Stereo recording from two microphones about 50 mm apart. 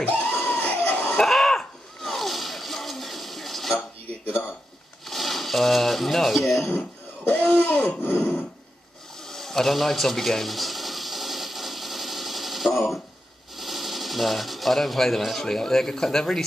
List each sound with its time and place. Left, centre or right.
0.0 s a sound: left
1.2 s splash: centre
5.0 s speech: centre
7.6 s speech: left
9.2 s a sound: centre
13.6 s speech: centre